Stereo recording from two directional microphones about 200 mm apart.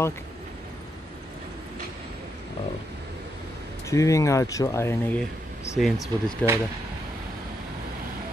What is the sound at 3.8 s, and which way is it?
Speech, 15° left (ahead or behind).